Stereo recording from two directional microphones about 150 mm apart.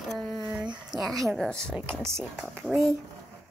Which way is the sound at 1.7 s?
15° right (ahead or behind).